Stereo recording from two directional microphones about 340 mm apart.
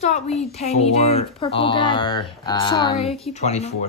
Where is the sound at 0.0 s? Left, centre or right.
Centre.